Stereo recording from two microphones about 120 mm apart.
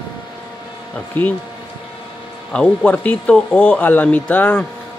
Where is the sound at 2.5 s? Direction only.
10° left (ahead or behind).